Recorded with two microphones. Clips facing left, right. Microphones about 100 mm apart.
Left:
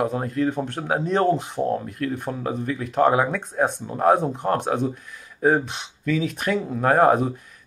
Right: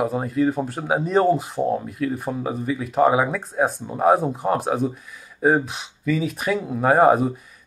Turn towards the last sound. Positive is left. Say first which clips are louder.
# right 2 dB
turn(degrees=0)  # may be behind; listen again after turning